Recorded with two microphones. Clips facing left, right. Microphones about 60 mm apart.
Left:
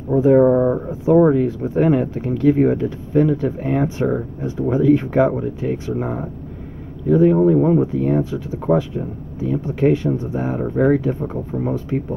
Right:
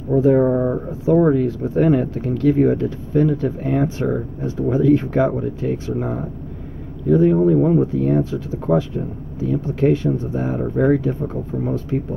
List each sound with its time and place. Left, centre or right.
0.1 s speech: centre
1.2 s speech: centre
1.6 s speech: centre
7.3 s speech: left